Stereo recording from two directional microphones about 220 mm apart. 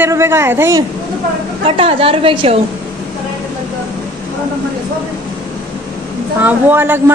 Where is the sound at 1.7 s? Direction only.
25° right (ahead or behind).